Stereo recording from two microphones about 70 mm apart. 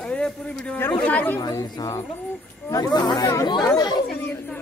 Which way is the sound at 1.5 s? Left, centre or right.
Left.